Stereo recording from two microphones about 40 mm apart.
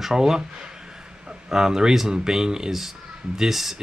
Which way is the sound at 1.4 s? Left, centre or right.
Centre.